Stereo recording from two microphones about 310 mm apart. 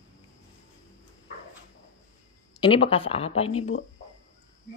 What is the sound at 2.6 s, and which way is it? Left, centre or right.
Speech, centre.